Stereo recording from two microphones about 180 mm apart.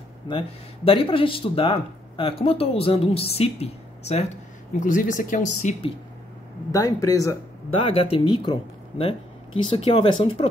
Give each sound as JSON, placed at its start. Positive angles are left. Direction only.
{"t": 0.3, "sound": "speech", "side_deg": 30}
{"t": 6.7, "sound": "speech", "side_deg": 20}
{"t": 7.8, "sound": "speech", "side_deg": 30}